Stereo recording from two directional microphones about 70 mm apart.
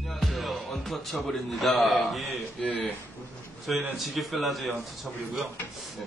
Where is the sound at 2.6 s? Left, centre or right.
Left.